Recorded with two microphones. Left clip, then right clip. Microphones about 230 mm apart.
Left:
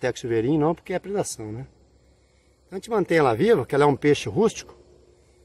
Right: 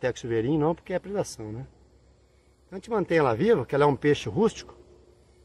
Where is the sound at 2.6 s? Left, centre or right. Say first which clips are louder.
Left 4 dB; left.